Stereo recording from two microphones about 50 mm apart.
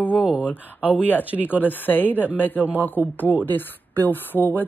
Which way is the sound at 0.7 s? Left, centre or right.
Right.